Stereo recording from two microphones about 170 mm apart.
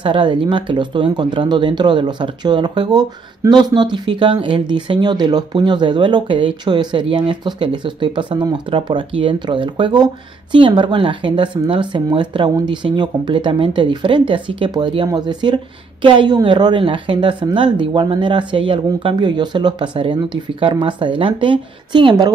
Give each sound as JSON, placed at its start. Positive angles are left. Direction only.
{"t": 0.0, "sound": "speech", "side_deg": -30}